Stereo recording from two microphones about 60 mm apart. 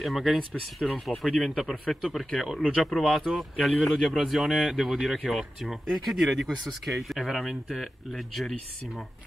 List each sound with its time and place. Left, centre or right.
0.0 s speech: centre
2.0 s speech: centre
2.7 s speech: centre